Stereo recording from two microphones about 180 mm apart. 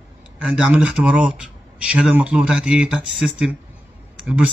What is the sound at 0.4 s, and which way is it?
Speech, 5° right (ahead or behind).